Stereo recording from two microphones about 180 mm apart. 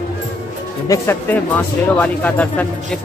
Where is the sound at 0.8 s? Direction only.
15° left (ahead or behind).